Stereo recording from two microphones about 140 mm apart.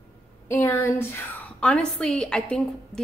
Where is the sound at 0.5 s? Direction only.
15° left (ahead or behind).